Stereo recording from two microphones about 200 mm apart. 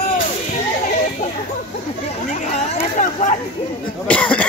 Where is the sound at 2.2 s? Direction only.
35° left (ahead or behind).